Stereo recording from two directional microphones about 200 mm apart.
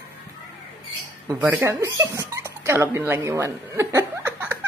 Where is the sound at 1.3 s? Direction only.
15° right (ahead or behind).